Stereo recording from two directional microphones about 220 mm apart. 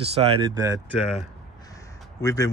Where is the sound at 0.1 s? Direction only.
25° right (ahead or behind).